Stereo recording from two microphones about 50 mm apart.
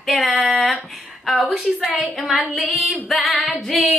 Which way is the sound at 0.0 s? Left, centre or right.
Centre.